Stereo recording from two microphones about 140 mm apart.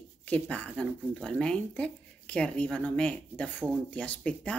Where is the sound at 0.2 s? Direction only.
10° left (ahead or behind).